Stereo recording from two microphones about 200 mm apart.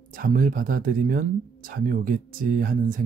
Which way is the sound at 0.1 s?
45° right (ahead or behind).